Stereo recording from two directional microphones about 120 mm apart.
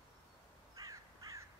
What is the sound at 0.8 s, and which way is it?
Crow, 25° right (ahead or behind).